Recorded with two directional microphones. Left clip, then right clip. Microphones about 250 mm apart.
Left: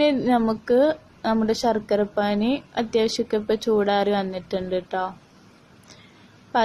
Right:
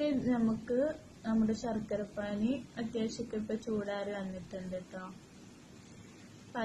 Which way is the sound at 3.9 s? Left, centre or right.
Left.